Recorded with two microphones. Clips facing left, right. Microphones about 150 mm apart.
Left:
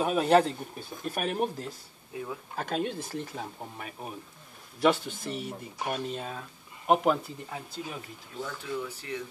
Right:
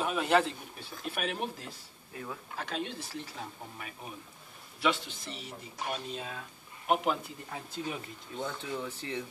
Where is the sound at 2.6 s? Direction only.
50° left (ahead or behind).